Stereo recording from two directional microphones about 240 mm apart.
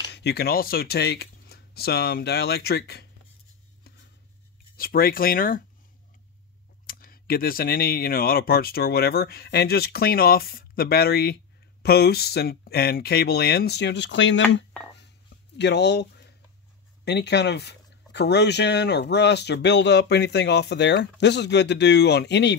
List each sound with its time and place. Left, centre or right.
0.1 s speech: left
4.7 s speech: left
6.9 s speech: left